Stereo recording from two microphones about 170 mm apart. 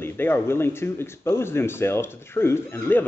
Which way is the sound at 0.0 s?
15° left (ahead or behind).